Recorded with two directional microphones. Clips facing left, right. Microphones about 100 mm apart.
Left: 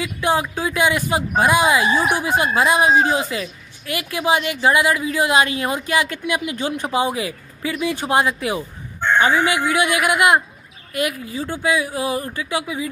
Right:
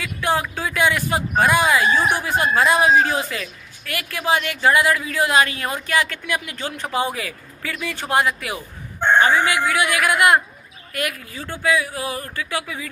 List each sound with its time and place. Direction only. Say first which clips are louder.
0.0 s speech: left 2 dB; 20° left (ahead or behind)